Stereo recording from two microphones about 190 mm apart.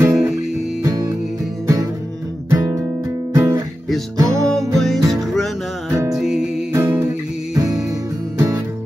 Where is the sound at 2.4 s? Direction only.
15° right (ahead or behind).